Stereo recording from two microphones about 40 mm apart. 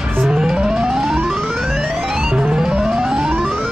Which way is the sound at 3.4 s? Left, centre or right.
Centre.